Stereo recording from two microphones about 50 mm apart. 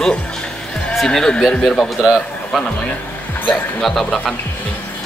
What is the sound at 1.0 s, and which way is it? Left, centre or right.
Speech, centre.